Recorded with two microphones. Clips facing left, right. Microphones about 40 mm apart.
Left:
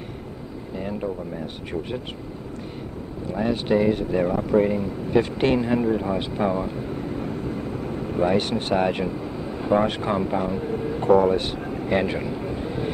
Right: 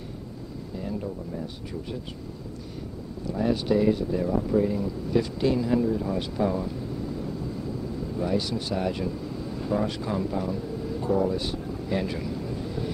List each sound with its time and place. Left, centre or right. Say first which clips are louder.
0.7 s a sound: left 4 dB; left
3.3 s speech: left 2 dB; left
4.7 s speech: left 4 dB; left
6.1 s vehicle: left 3 dB; left
9.8 s speech: left 6 dB; left
11.1 s speech: left 8 dB; left